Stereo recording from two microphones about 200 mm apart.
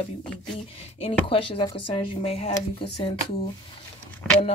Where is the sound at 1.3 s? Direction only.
25° left (ahead or behind).